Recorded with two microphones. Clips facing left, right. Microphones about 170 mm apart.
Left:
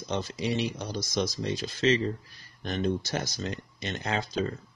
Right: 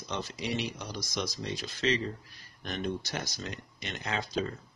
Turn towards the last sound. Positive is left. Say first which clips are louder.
# left 3 dB
turn(degrees=30)  # may be behind; listen again after turning